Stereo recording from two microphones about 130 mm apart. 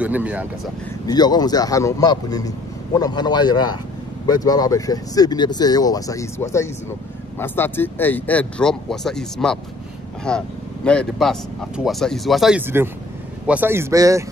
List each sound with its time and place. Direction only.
0.0 s speech: 10° right (ahead or behind)
1.0 s a man's voice: 30° left (ahead or behind); by 12.6 s 5° right (ahead or behind)
12.6 s speech: 15° right (ahead or behind)